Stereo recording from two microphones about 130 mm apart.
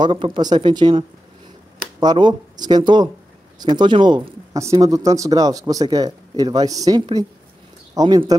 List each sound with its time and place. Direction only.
0.0 s speech: 40° right (ahead or behind)
4.6 s speech: 25° right (ahead or behind)